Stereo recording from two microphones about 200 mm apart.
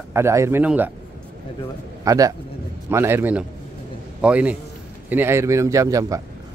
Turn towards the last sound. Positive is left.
turn(degrees=-15)  # may be behind; listen again after turning